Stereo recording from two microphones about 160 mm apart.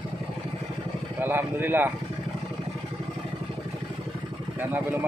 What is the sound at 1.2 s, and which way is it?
Speech, 15° right (ahead or behind).